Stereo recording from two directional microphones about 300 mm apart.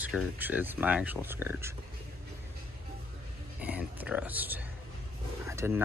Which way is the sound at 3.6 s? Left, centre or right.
Centre.